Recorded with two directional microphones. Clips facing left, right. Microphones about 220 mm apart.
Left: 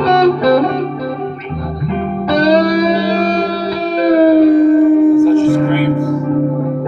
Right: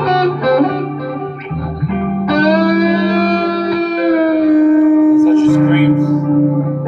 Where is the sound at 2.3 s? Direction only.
30° left (ahead or behind).